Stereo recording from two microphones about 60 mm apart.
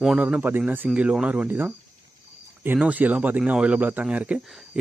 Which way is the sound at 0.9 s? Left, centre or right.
Centre.